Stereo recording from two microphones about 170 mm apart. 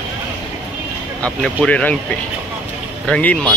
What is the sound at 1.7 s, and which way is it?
Speech, 10° left (ahead or behind).